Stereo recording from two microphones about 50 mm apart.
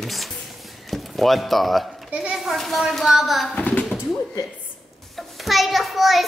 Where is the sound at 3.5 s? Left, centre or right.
Left.